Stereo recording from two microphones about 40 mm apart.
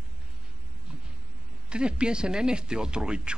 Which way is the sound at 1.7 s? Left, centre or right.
Right.